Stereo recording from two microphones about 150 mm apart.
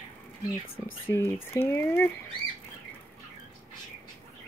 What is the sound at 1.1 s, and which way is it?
Speech, 15° left (ahead or behind).